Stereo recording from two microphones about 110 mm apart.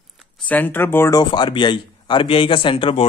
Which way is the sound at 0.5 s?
15° left (ahead or behind).